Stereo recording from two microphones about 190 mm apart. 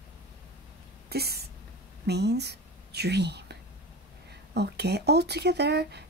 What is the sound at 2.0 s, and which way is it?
Speech, 60° right (ahead or behind).